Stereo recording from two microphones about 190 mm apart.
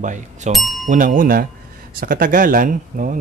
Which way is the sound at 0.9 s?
45° right (ahead or behind).